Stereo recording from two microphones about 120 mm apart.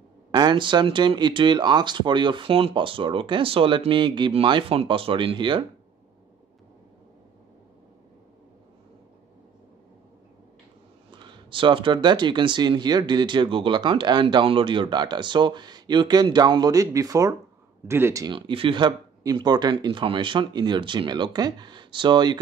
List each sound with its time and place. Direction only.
0.3 s speech: 35° right (ahead or behind)
11.1 s speech: 40° right (ahead or behind); by 18.2 s 20° right (ahead or behind)
18.2 s speech: 45° right (ahead or behind)